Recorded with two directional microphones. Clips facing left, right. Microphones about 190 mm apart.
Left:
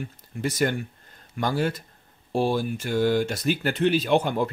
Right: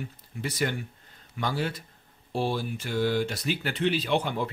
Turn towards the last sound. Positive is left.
turn(degrees=45)  # may be behind; listen again after turning